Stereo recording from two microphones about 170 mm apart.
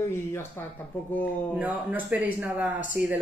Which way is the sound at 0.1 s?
15° left (ahead or behind).